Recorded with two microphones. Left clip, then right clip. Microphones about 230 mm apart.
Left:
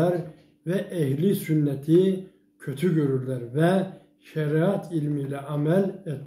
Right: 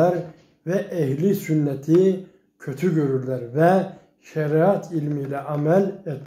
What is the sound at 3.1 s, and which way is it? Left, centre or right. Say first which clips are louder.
Speech: right 4 dB; centre.